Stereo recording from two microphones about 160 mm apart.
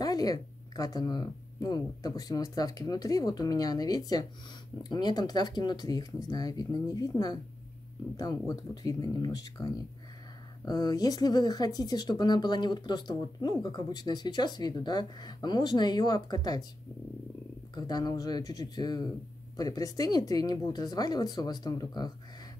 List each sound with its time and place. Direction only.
0.0 s speech: 25° left (ahead or behind)
17.7 s speech: 25° left (ahead or behind)